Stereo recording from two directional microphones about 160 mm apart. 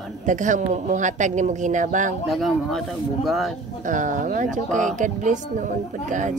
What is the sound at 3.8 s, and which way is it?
A woman's voice, 55° right (ahead or behind).